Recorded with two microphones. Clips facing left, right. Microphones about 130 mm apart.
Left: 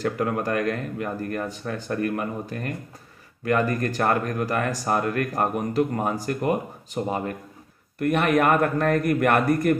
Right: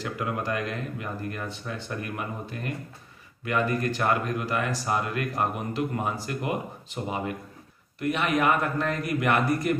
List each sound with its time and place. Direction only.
0.0 s speech: 45° left (ahead or behind)
8.0 s speech: 55° left (ahead or behind)